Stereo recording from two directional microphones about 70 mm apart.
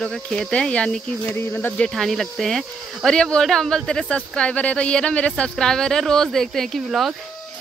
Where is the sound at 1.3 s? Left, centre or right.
Left.